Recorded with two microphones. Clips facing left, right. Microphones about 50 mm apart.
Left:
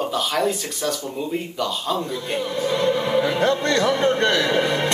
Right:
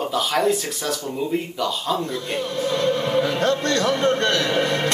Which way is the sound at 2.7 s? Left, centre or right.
Centre.